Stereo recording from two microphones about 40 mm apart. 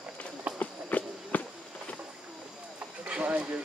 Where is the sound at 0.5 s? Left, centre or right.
Left.